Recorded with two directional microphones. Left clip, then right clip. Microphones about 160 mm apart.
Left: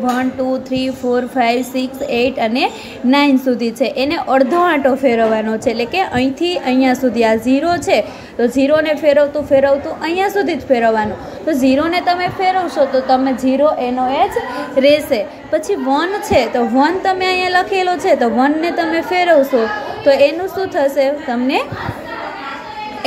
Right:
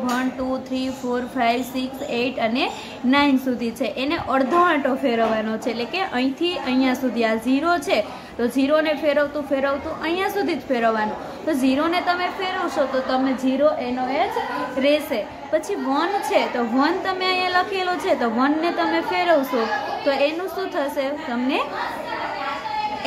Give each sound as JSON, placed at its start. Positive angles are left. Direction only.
{"t": 0.0, "sound": "a woman's voice", "side_deg": 25}